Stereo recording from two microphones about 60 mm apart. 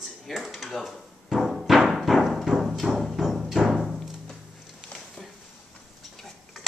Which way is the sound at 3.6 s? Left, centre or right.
Centre.